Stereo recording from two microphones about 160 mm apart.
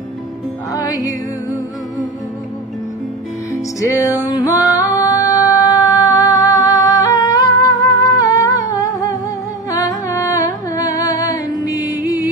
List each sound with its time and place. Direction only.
0.8 s music: 25° left (ahead or behind)
4.2 s music: 25° left (ahead or behind)